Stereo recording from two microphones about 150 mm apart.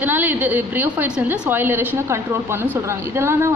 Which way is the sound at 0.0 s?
15° right (ahead or behind).